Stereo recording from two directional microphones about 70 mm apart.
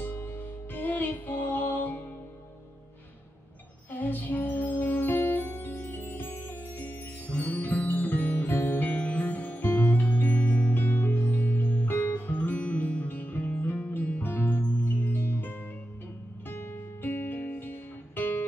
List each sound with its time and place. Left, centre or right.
0.0 s music: left
3.9 s music: left